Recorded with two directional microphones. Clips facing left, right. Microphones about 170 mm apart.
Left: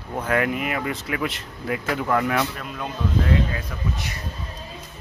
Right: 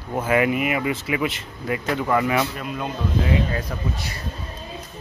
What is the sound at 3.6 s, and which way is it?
Speech, 40° right (ahead or behind).